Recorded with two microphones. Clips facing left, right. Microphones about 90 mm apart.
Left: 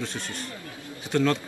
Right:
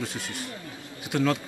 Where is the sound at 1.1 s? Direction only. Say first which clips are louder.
Left 1 dB; 5° right (ahead or behind).